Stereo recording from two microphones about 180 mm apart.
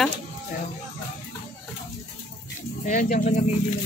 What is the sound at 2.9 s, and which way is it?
Speech, 45° left (ahead or behind).